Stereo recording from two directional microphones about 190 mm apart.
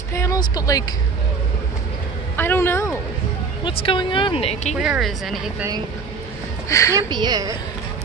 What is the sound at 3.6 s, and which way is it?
Speech, 30° left (ahead or behind).